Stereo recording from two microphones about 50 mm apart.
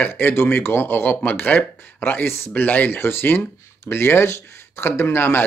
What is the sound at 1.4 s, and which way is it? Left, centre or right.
Speech, left.